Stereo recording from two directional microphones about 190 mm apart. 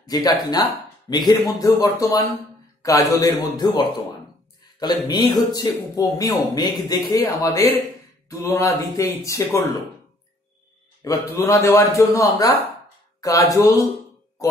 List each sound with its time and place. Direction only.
0.0 s speech: 20° left (ahead or behind)
11.1 s speech: 15° left (ahead or behind)